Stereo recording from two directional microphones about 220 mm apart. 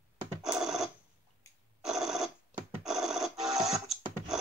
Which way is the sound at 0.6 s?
Centre (ahead or behind).